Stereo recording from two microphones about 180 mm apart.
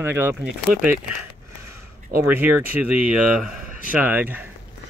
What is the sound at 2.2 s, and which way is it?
Speech, 10° right (ahead or behind).